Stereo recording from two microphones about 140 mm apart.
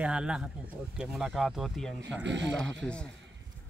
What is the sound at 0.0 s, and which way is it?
Speech, 5° right (ahead or behind).